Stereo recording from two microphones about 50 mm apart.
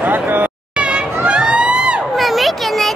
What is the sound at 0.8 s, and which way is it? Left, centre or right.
Crowd, right.